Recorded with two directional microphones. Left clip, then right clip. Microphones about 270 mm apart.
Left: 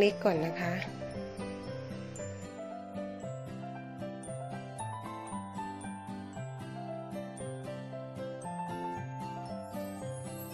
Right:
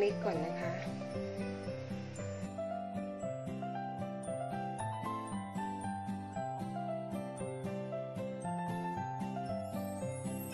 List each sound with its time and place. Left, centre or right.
0.0 s speech: left